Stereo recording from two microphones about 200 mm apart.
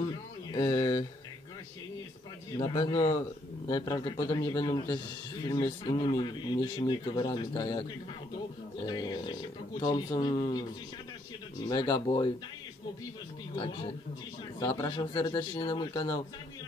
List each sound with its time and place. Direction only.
0.0 s a sound: 20° left (ahead or behind)
2.5 s a man's voice: 20° left (ahead or behind)
11.6 s a man's voice: 20° left (ahead or behind)
13.6 s a man's voice: 25° left (ahead or behind)